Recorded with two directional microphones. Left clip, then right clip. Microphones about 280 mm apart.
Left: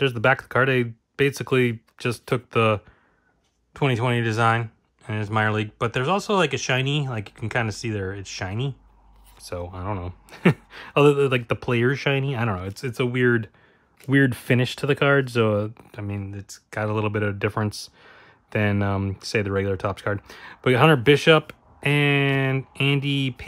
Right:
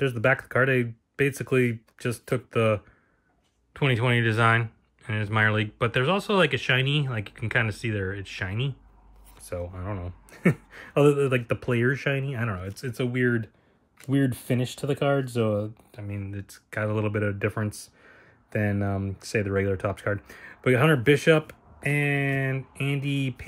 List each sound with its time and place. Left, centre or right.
0.0 s speech: centre